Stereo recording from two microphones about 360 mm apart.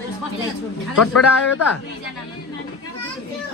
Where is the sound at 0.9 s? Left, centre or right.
Left.